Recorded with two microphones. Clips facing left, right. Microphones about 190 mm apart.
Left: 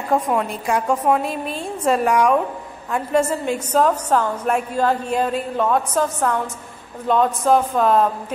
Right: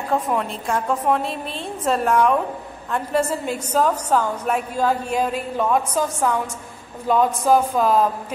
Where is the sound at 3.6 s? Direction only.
10° right (ahead or behind).